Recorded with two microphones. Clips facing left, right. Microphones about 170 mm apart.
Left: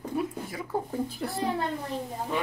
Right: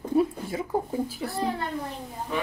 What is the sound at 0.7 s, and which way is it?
Speech, 15° right (ahead or behind).